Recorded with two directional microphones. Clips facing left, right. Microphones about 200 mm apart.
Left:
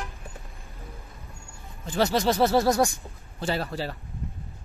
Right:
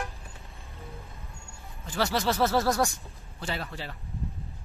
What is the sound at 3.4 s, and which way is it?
Speech, 35° left (ahead or behind).